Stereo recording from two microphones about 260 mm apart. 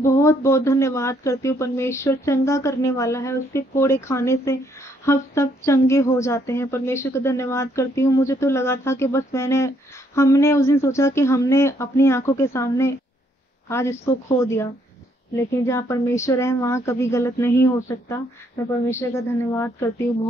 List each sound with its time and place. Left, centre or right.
0.0 s speech: centre